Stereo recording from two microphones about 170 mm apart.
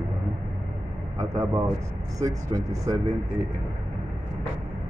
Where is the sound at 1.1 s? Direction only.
20° right (ahead or behind).